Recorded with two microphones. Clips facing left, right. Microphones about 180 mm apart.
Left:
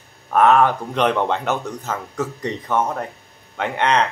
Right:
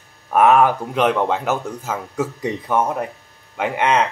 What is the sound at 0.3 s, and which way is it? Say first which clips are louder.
Speech: right 1 dB; 10° right (ahead or behind).